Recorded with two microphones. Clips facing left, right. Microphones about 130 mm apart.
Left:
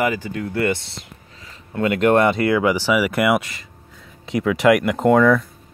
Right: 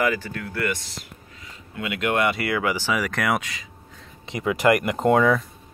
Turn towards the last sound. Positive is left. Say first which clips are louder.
# left 4 dB
turn(degrees=-5)  # may be behind; listen again after turning